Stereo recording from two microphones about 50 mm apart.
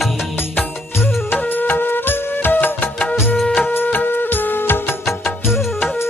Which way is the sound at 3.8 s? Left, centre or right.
Left.